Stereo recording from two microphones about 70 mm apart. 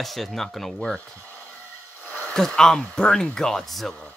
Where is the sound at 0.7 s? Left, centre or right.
Centre.